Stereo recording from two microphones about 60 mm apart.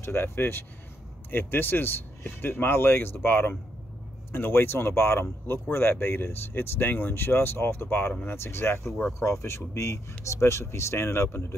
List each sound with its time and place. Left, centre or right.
0.0 s speech: left